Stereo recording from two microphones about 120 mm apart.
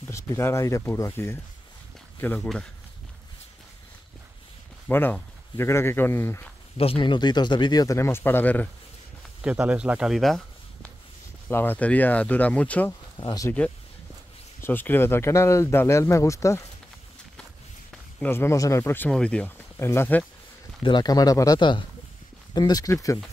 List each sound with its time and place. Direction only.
0.0 s speech: 20° left (ahead or behind)
4.8 s speech: 15° left (ahead or behind)
6.8 s speech: 45° left (ahead or behind); by 8.6 s 15° left (ahead or behind)
9.4 s speech: 10° right (ahead or behind)
11.4 s speech: 15° left (ahead or behind)
13.2 s speech: 35° left (ahead or behind)
14.6 s speech: 15° left (ahead or behind)
18.2 s speech: 20° left (ahead or behind)
19.0 s speech: 10° left (ahead or behind)
19.8 s speech: 20° left (ahead or behind)
20.8 s speech: 35° left (ahead or behind)